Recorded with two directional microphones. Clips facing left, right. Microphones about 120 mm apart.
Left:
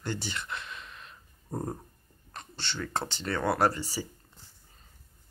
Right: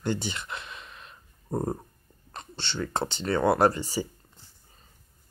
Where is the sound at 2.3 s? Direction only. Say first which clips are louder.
Right 4 dB; 25° right (ahead or behind).